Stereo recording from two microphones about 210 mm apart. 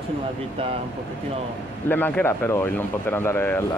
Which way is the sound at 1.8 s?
10° left (ahead or behind).